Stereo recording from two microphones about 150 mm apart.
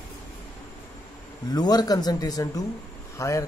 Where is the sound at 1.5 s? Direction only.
25° left (ahead or behind).